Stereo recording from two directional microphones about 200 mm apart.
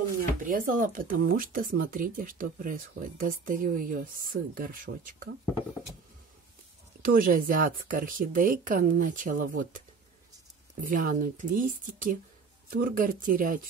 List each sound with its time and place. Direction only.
0.4 s speech: 45° right (ahead or behind)
7.0 s speech: 45° right (ahead or behind)